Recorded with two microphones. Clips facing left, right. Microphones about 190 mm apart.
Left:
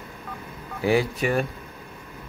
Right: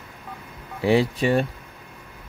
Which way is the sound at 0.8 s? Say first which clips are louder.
Right 2 dB; 30° right (ahead or behind).